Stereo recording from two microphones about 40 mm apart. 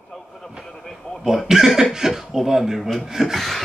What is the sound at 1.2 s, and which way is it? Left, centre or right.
Speech, centre.